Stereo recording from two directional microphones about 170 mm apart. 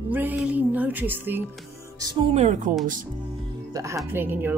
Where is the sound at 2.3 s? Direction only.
45° right (ahead or behind).